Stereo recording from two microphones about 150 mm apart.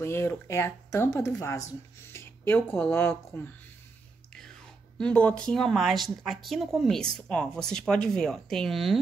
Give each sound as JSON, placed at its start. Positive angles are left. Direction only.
{"t": 0.0, "sound": "speech", "side_deg": 15}
{"t": 4.9, "sound": "speech", "side_deg": 5}